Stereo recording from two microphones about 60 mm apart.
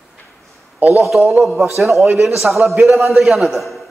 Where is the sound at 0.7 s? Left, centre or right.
Right.